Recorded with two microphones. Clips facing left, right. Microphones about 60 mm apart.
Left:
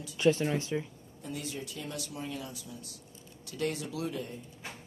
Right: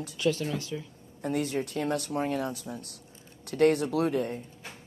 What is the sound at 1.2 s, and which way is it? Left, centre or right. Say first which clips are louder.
Speech: right 10 dB; right.